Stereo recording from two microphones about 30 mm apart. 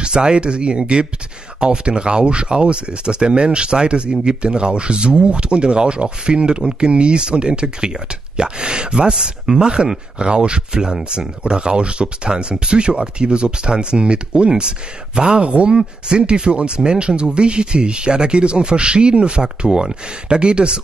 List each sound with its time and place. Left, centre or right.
0.0 s speech: right
9.1 s speech: centre
15.4 s speech: right